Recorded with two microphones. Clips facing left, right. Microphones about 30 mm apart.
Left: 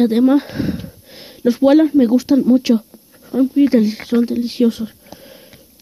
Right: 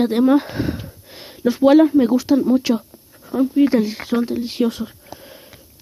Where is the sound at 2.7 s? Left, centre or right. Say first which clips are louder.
Left 7 dB; centre.